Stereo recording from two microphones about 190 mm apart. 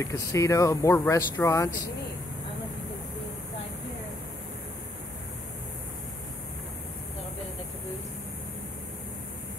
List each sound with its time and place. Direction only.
0.0 s speech: 15° left (ahead or behind)